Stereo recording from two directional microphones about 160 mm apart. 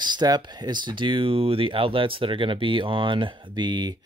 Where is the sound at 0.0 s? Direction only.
25° right (ahead or behind).